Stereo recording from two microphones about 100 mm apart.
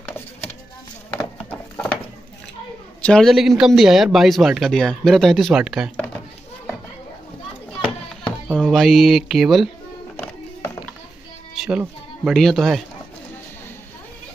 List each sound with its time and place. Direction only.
1.1 s horse: 15° left (ahead or behind)
3.0 s a man's voice: 5° left (ahead or behind)
3.3 s speech: 5° right (ahead or behind)
8.5 s speech: centre (ahead or behind)
10.1 s a sound: 15° left (ahead or behind)
11.5 s music: 5° right (ahead or behind)
12.3 s speech: centre (ahead or behind)